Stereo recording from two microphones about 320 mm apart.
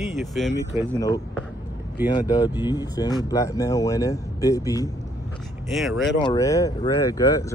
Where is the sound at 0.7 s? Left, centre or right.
Left.